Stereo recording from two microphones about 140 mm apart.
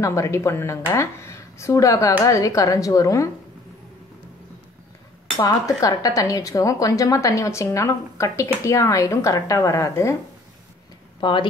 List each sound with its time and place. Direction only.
0.0 s speech: 20° left (ahead or behind)
5.4 s speech: 25° left (ahead or behind)
11.1 s speech: 35° left (ahead or behind)